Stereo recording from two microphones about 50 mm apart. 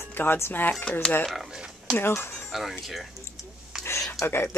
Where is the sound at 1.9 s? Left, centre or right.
Left.